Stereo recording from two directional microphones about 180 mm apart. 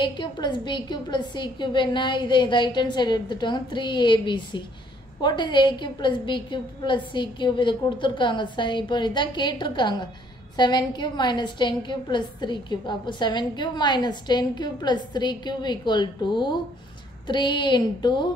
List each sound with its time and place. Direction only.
0.0 s a woman's voice: 25° left (ahead or behind)